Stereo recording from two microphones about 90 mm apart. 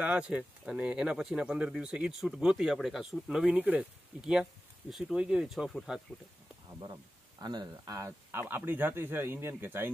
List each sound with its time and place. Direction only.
0.0 s speech: 15° right (ahead or behind)
7.4 s speech: 45° right (ahead or behind)
8.3 s speech: 25° right (ahead or behind)